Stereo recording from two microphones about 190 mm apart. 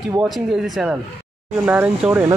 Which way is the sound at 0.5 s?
Centre (ahead or behind).